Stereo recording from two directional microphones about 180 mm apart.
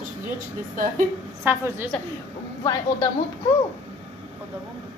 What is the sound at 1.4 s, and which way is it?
Speech, 10° right (ahead or behind).